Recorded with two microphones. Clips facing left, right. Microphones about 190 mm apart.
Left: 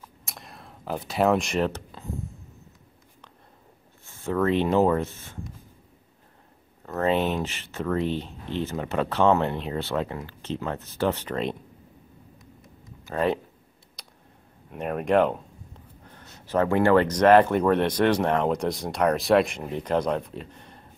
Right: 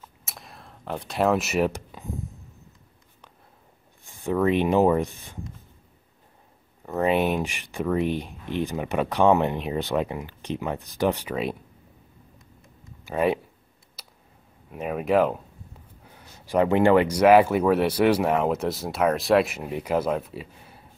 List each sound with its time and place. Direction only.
0.2 s a sound: centre (ahead or behind)
4.0 s speech: 15° right (ahead or behind)
6.9 s speech: 15° right (ahead or behind)
13.0 s speech: 10° right (ahead or behind)
14.0 s a sound: 5° right (ahead or behind)
14.7 s speech: 5° right (ahead or behind)